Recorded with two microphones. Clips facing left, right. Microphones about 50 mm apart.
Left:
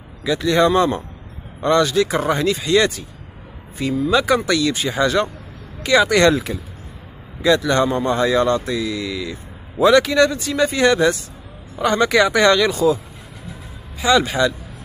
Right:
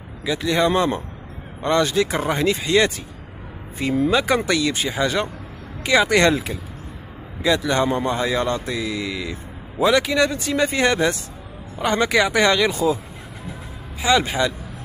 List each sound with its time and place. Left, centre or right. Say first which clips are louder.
0.2 s speech: left 4 dB; centre
10.3 s speech: left 1 dB; right
14.0 s speech: left 3 dB; right